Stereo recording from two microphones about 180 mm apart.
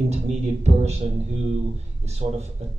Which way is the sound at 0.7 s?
35° right (ahead or behind).